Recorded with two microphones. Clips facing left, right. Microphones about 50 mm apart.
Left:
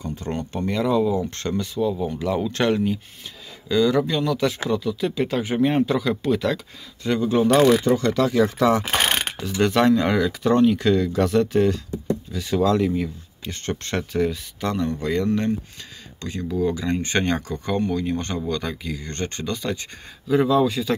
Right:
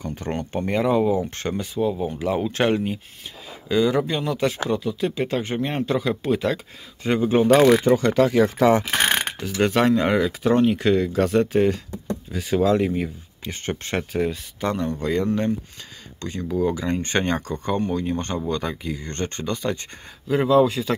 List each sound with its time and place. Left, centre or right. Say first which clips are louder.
0.0 s speech: even; right
1.3 s speech: left 1 dB; centre
5.9 s speech: left 1 dB; centre; by 8.8 s right
9.4 s speech: left 2 dB; centre
16.2 s speech: even; centre
16.5 s speech: even; centre
20.2 s speech: right 1 dB; right